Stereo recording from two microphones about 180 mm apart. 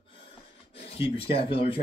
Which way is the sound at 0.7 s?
30° left (ahead or behind).